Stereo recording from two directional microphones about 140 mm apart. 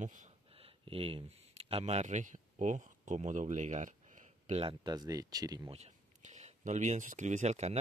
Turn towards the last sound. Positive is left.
turn(degrees=-55)  # may be behind; listen again after turning